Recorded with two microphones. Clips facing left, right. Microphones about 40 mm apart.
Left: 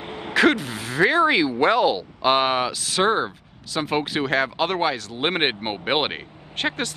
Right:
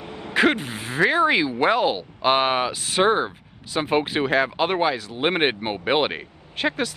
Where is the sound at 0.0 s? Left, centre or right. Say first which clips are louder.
Left 2 dB; left.